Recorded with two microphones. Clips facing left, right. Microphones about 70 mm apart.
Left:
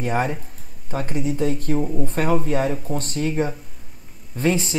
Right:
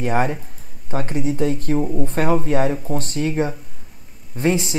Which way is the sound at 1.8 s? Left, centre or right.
Centre.